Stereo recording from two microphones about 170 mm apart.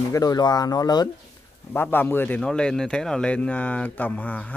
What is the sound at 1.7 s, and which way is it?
A man's voice, 10° left (ahead or behind).